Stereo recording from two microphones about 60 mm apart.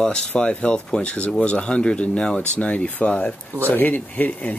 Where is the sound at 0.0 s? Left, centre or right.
Centre.